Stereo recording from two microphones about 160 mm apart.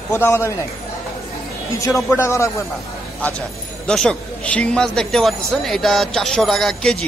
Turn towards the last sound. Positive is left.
turn(degrees=5)  # may be behind; listen again after turning